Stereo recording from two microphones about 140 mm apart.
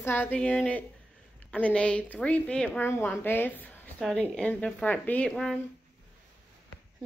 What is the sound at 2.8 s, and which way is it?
Speech, 20° left (ahead or behind).